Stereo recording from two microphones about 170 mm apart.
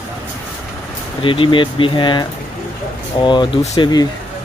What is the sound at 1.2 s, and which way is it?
Speech, 30° left (ahead or behind).